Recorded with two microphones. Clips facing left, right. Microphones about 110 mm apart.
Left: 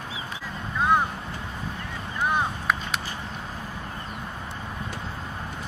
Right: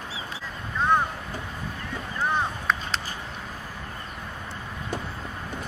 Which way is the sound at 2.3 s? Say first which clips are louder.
Left 1 dB; 10° left (ahead or behind).